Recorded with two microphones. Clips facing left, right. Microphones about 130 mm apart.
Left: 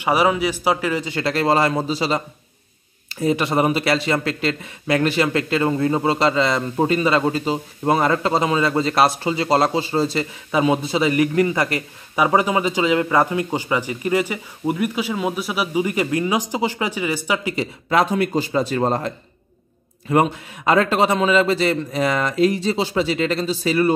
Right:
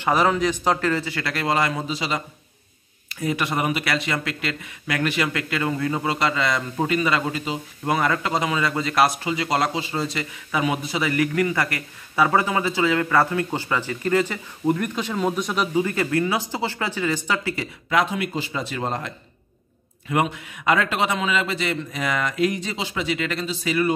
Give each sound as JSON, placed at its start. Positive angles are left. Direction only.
{"t": 0.0, "sound": "speech", "side_deg": 10}
{"t": 1.1, "sound": "a man's voice", "side_deg": 30}
{"t": 17.8, "sound": "a man's voice", "side_deg": 40}